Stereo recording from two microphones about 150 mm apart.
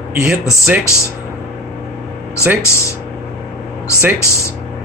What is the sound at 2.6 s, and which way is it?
Speech, 20° left (ahead or behind).